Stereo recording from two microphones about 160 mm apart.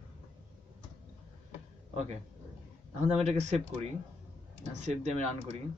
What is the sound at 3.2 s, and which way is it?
Speech, 40° right (ahead or behind).